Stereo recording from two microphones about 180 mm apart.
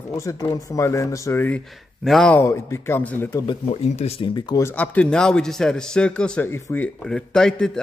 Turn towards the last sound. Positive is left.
turn(degrees=5)  # may be behind; listen again after turning